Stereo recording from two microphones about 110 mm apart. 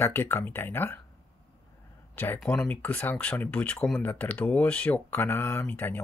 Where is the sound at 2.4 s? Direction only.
5° left (ahead or behind).